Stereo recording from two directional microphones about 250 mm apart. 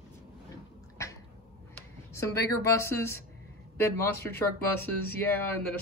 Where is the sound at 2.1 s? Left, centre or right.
Centre.